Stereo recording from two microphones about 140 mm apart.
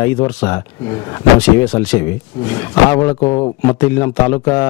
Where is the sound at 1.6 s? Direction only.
15° left (ahead or behind).